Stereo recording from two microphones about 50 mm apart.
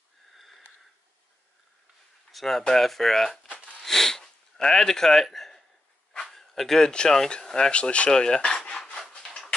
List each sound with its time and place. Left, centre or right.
2.3 s speech: centre
3.5 s a sound: left
3.8 s speech: centre
8.6 s rub: left